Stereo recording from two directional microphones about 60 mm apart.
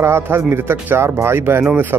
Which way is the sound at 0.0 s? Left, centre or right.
Right.